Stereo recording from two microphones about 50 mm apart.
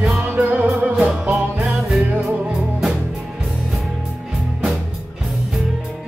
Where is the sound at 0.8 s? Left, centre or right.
Centre.